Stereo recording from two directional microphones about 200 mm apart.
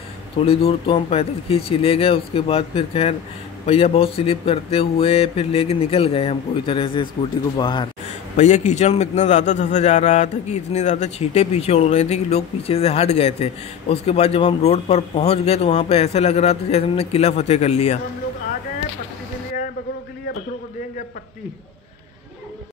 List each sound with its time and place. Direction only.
0.4 s speech: 30° left (ahead or behind)
8.4 s a man's voice: 35° left (ahead or behind)